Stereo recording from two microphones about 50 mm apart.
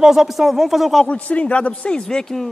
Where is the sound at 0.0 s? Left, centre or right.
Centre.